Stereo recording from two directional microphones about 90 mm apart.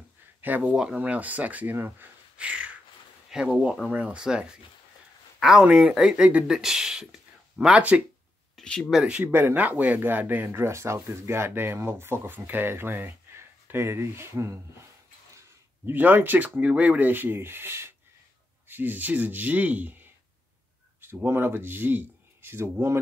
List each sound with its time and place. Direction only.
0.4 s speech: 20° right (ahead or behind)
8.5 s speech: 10° left (ahead or behind)
8.9 s speech: 10° right (ahead or behind); by 14.6 s 30° right (ahead or behind)
15.8 s speech: 20° right (ahead or behind)